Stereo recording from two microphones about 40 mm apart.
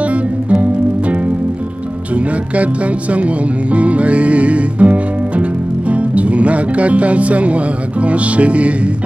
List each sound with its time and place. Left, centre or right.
0.0 s music: right
2.1 s music: right